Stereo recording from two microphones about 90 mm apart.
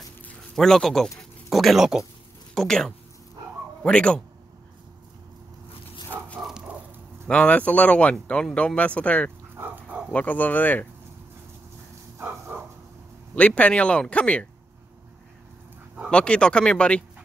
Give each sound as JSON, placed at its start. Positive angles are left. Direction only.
{"t": 0.6, "sound": "speech", "side_deg": 5}
{"t": 7.2, "sound": "speech", "side_deg": 15}
{"t": 9.6, "sound": "dog", "side_deg": -20}
{"t": 10.1, "sound": "speech", "side_deg": 20}
{"t": 12.2, "sound": "bow-wow", "side_deg": -20}
{"t": 13.3, "sound": "speech", "side_deg": 15}
{"t": 16.1, "sound": "speech", "side_deg": 10}